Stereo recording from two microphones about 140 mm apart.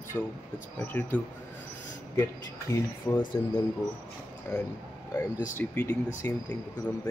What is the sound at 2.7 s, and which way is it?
Speech, 25° left (ahead or behind).